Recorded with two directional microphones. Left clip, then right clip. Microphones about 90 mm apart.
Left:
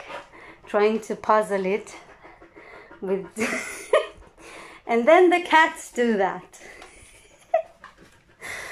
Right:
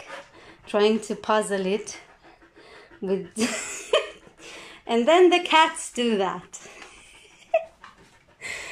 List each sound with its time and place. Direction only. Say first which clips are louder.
0.4 s a woman's voice: even; 10° right (ahead or behind)
1.6 s a woman's voice: left 1 dB; 50° left (ahead or behind)
2.6 s hiccup: even; 5° right (ahead or behind)